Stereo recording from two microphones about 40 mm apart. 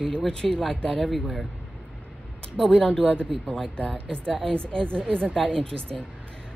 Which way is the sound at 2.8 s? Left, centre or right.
Left.